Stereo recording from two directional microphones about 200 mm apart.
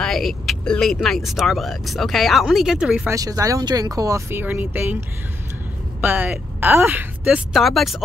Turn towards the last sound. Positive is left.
turn(degrees=0)  # may be behind; listen again after turning